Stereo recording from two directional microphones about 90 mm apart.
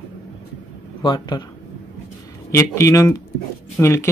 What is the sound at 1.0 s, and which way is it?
Speech, 55° left (ahead or behind).